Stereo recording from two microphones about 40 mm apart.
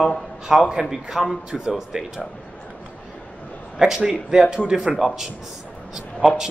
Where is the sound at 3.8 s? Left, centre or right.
Centre.